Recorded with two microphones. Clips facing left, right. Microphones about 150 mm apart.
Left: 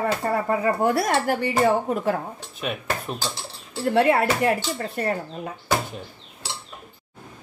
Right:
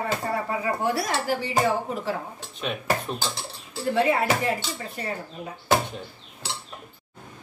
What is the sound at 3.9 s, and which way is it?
Speech, 60° left (ahead or behind).